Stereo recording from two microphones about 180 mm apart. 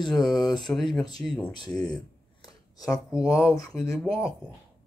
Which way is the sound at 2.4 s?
20° left (ahead or behind).